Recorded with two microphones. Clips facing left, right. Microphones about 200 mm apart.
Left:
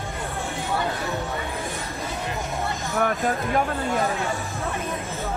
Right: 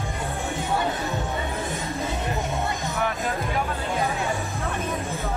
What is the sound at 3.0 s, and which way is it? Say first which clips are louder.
Speech: left 6 dB; 50° left (ahead or behind).